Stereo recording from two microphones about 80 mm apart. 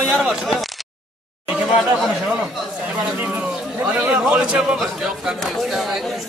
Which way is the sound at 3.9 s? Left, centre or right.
Centre.